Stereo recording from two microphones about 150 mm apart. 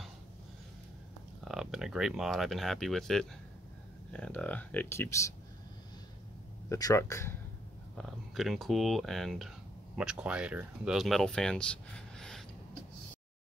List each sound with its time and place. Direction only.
1.4 s speech: centre (ahead or behind); by 5.3 s 15° left (ahead or behind)
6.7 s speech: 20° left (ahead or behind)
8.0 s speech: centre (ahead or behind)